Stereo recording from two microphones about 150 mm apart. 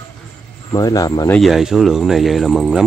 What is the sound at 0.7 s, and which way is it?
Speech, 25° left (ahead or behind).